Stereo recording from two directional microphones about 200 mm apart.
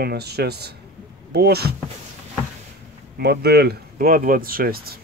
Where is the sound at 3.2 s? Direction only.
55° right (ahead or behind).